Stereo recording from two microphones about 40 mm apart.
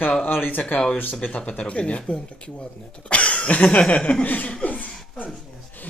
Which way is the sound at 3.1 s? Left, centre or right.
Left.